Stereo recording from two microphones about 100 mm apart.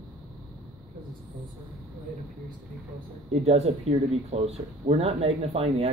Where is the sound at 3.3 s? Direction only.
90° right.